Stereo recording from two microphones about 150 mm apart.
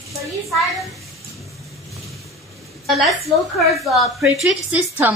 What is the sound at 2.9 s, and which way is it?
A woman's voice, centre (ahead or behind).